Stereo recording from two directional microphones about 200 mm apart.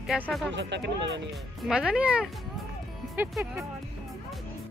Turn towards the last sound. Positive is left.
turn(degrees=0)  # may be behind; listen again after turning